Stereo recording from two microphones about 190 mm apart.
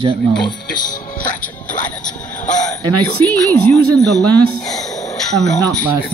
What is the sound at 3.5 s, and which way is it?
A woman's voice, 10° left (ahead or behind).